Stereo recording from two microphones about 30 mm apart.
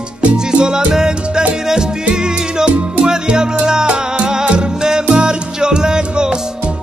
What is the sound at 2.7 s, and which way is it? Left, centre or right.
Music, right.